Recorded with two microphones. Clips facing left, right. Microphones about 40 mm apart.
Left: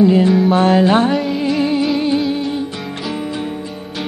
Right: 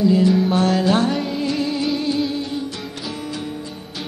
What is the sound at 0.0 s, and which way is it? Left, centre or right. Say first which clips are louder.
Music: left 4 dB; left.